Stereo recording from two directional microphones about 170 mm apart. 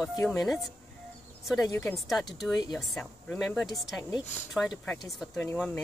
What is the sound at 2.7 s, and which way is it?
Speech, centre (ahead or behind).